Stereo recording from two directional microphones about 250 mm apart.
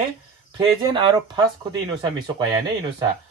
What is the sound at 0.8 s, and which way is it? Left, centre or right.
Speech, centre.